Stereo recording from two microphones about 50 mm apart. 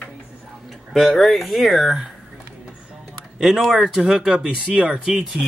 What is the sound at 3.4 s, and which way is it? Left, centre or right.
Speech, centre.